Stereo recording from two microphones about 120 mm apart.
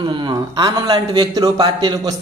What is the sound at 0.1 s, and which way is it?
A man's voice, 35° right (ahead or behind).